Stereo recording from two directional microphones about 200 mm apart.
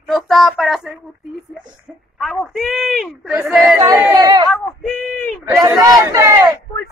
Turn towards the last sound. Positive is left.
turn(degrees=-15)  # may be behind; listen again after turning